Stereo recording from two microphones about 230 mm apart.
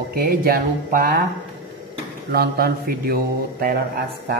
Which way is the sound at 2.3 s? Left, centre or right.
Right.